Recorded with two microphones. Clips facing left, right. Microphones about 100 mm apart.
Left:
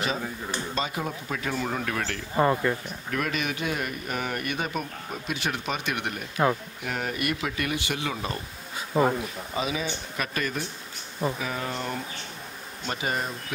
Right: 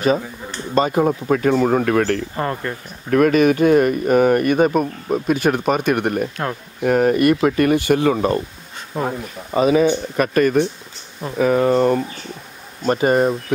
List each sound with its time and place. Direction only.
0.7 s speech: 50° right (ahead or behind)
2.3 s speech: 5° left (ahead or behind)
3.1 s speech: 50° right (ahead or behind)
8.9 s speech: centre (ahead or behind)
9.5 s speech: 50° right (ahead or behind)